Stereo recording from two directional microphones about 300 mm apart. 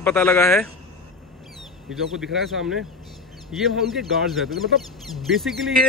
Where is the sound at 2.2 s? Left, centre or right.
Centre.